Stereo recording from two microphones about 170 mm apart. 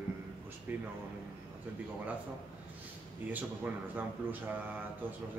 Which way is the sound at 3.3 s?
10° right (ahead or behind).